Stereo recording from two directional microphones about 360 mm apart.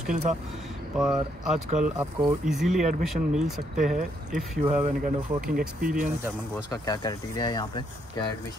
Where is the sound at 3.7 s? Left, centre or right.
Right.